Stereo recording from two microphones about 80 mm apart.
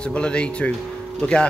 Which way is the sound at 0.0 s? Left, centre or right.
Centre.